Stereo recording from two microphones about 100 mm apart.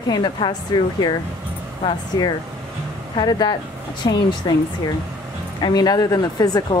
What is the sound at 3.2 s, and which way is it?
Speech, 45° left (ahead or behind).